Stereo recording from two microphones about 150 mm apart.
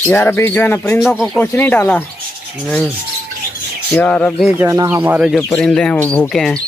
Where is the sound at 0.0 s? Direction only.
15° left (ahead or behind).